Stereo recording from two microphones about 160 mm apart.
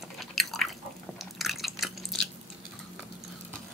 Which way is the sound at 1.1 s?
Centre (ahead or behind).